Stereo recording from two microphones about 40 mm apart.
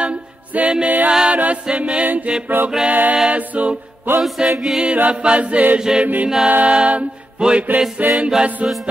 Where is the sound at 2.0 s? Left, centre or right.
Right.